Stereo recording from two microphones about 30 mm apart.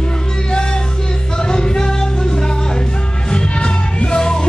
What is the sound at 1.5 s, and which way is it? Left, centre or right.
Music, left.